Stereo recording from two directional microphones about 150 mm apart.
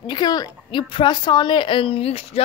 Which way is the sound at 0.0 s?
30° left (ahead or behind).